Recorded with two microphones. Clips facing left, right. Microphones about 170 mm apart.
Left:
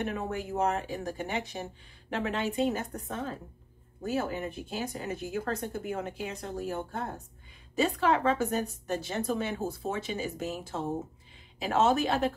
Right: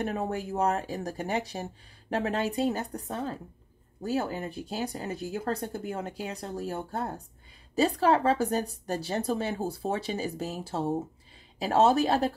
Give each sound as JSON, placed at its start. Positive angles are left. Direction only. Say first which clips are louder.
{"t": 0.0, "sound": "speech", "louder": "right 2 dB", "side_deg": -35}